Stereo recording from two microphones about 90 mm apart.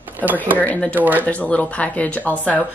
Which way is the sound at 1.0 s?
20° right (ahead or behind).